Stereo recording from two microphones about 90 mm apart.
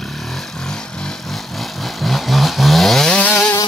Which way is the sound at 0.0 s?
Centre (ahead or behind).